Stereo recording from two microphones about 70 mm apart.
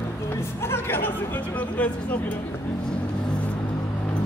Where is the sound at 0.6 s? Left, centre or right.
Left.